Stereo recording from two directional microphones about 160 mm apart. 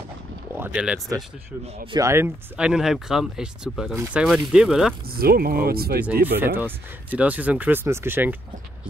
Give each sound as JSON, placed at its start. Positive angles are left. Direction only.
{"t": 0.6, "sound": "speech", "side_deg": -10}
{"t": 1.9, "sound": "speech", "side_deg": -20}
{"t": 3.9, "sound": "speech", "side_deg": -15}
{"t": 4.2, "sound": "speech", "side_deg": -5}
{"t": 5.1, "sound": "speech", "side_deg": -70}
{"t": 6.4, "sound": "speech", "side_deg": -10}